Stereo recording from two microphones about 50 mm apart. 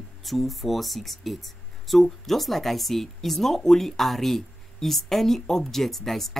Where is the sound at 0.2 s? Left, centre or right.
Centre.